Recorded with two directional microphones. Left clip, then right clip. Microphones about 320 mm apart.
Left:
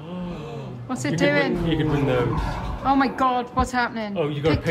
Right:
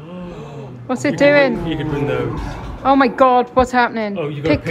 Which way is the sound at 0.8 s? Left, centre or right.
Centre.